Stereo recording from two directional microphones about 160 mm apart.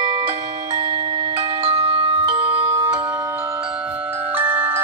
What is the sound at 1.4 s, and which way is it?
Glockenspiel, 35° right (ahead or behind).